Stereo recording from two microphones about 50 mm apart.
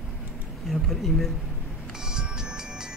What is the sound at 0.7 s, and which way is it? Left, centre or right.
Speech, centre.